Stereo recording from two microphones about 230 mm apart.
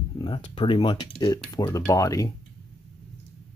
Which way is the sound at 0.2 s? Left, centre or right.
Left.